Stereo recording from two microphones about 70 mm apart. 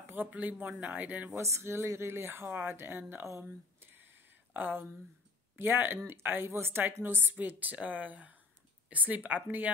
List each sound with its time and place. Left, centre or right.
0.0 s speech: right
1.3 s speech: right
3.3 s a sound: right
5.6 s speech: right